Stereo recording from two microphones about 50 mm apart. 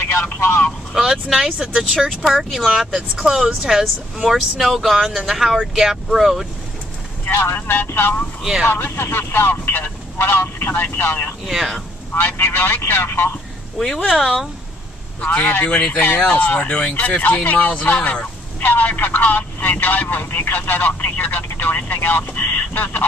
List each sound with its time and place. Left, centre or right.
0.4 s speech: left
0.9 s speech: centre
2.0 s speech: centre
4.2 s speech: centre
7.2 s speech: left
11.4 s speech: centre
12.1 s speech: left
13.7 s speech: centre
15.1 s speech: left